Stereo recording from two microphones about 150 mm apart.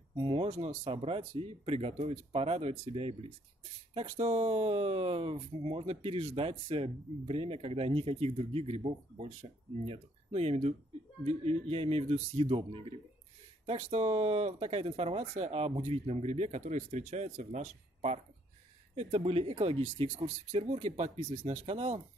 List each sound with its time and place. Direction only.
0.2 s speech: 40° right (ahead or behind)